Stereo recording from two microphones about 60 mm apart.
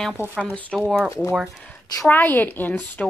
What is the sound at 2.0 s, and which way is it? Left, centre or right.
A woman's voice, left.